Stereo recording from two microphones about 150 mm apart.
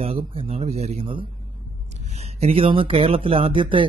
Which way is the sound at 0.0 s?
40° right (ahead or behind).